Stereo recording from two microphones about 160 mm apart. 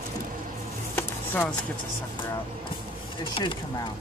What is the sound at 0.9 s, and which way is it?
Music, 10° left (ahead or behind).